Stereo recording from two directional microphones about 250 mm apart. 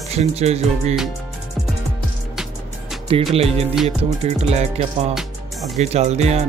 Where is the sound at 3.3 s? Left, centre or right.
Right.